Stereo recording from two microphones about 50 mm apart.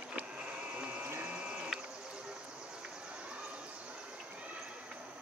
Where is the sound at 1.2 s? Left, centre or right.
Right.